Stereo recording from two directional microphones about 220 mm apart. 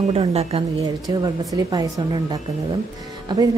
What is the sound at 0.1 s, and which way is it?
Speech, 25° right (ahead or behind).